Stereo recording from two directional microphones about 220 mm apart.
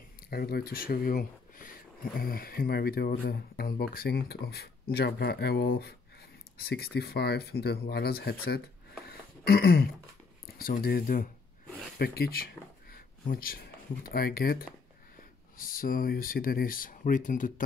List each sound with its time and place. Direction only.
0.3 s speech: 45° left (ahead or behind)
12.9 s a sound: 40° left (ahead or behind)
14.0 s speech: 45° left (ahead or behind)